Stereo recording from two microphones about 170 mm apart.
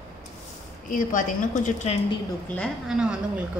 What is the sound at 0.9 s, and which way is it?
Speech, 50° left (ahead or behind).